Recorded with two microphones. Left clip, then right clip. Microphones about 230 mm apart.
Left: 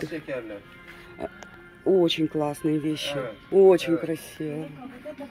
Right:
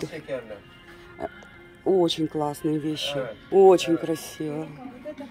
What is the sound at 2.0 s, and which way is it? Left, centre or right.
Speech, centre.